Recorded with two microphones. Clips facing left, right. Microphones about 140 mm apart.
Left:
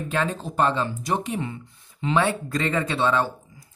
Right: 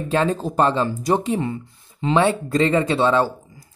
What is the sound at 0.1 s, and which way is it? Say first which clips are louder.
Speech: right 7 dB; 35° right (ahead or behind).